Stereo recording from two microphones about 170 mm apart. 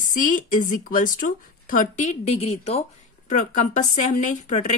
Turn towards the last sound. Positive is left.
turn(degrees=45)  # may be behind; listen again after turning